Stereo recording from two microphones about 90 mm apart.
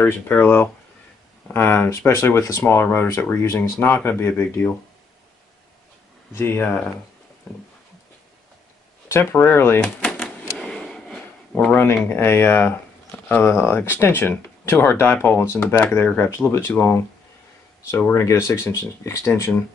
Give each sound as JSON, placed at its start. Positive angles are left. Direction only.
{"t": 0.0, "sound": "speech", "side_deg": 20}
{"t": 6.3, "sound": "speech", "side_deg": 25}
{"t": 9.1, "sound": "speech", "side_deg": 25}
{"t": 9.8, "sound": "a sound", "side_deg": 10}
{"t": 11.7, "sound": "speech", "side_deg": 25}
{"t": 17.9, "sound": "speech", "side_deg": 30}